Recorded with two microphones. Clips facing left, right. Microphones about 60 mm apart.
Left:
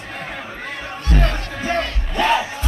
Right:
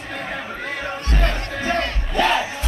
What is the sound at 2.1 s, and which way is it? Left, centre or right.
Crowd, centre.